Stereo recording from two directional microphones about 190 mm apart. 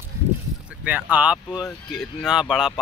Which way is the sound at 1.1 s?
5° right (ahead or behind).